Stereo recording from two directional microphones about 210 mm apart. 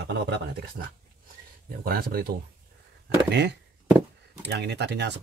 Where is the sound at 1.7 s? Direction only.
45° right (ahead or behind).